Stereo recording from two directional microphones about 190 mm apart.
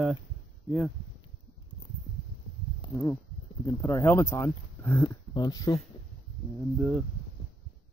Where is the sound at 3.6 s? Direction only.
15° left (ahead or behind).